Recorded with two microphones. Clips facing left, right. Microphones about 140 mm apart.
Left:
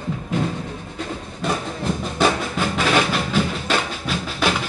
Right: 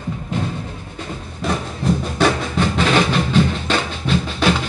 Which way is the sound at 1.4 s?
Centre (ahead or behind).